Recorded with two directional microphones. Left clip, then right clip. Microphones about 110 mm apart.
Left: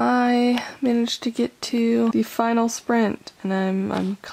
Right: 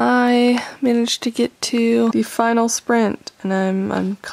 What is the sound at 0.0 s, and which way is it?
Speech, 20° right (ahead or behind).